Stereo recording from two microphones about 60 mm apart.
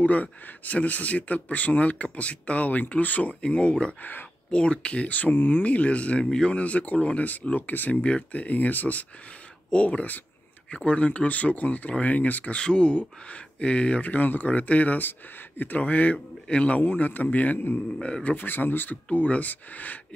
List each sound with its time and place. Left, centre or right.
0.0 s speech: left
4.0 s speech: left
4.5 s speech: centre; by 18.9 s left
19.0 s speech: left